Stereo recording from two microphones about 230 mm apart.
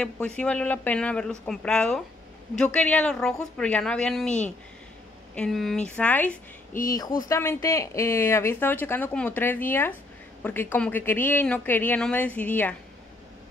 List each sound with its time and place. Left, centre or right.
0.0 s speech: centre